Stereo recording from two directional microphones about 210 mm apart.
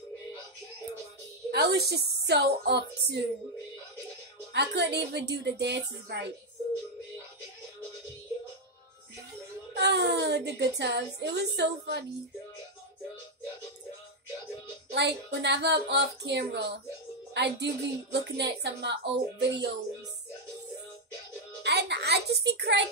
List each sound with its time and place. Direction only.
1.5 s a child's voice: 50° right (ahead or behind)
4.5 s a child's voice: 50° right (ahead or behind)
9.8 s a child's voice: 55° right (ahead or behind)
14.9 s a child's voice: 50° right (ahead or behind)
21.6 s a sound: 55° right (ahead or behind)